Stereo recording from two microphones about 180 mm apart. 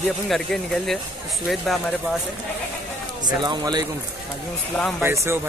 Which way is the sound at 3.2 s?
25° right (ahead or behind).